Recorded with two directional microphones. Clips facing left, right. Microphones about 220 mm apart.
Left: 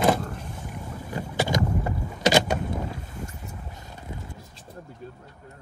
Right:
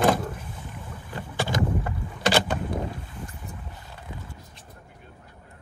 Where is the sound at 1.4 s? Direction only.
20° left (ahead or behind).